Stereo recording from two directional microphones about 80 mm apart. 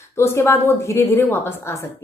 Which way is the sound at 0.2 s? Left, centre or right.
Left.